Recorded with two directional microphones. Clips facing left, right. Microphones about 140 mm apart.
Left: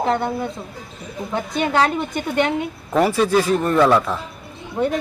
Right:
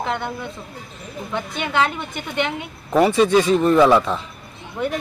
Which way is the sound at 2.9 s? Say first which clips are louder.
Right 2 dB; centre (ahead or behind).